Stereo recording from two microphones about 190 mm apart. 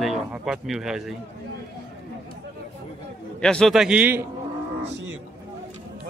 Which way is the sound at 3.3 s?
5° left (ahead or behind).